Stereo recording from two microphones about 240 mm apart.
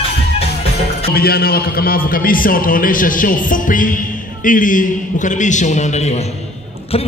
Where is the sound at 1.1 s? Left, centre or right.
Left.